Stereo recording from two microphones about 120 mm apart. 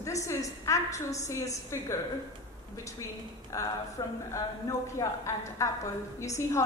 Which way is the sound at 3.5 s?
25° left (ahead or behind).